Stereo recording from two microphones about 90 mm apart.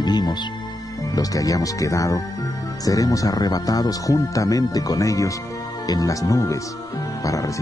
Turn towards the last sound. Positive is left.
turn(degrees=40)  # may be behind; listen again after turning